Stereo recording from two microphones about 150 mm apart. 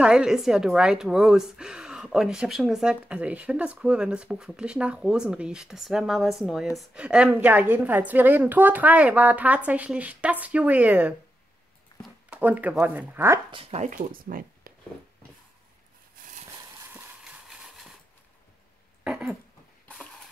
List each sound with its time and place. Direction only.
0.0 s a woman's voice: 5° right (ahead or behind)
12.3 s a woman's voice: 10° right (ahead or behind)
13.5 s speech: 40° right (ahead or behind)
13.9 s speech: 70° right (ahead or behind)
16.9 s clip-clop: 5° right (ahead or behind)
19.0 s a sound: 5° right (ahead or behind)